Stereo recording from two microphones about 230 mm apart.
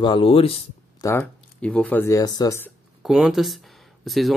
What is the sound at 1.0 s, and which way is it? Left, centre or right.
Speech, centre.